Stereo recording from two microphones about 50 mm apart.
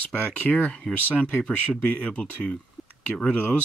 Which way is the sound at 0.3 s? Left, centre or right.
Left.